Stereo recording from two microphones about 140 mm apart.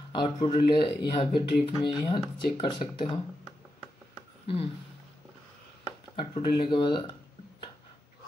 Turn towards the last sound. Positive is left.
turn(degrees=35)  # may be behind; listen again after turning